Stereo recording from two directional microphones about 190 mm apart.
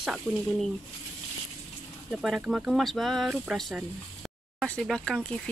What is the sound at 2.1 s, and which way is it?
Speech, centre (ahead or behind).